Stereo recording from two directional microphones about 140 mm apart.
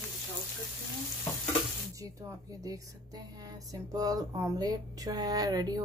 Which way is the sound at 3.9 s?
25° right (ahead or behind).